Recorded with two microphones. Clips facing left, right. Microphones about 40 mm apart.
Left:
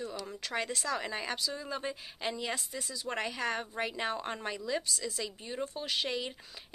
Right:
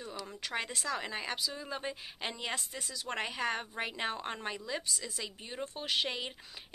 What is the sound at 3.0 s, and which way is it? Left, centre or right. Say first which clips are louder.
Speech: even; right.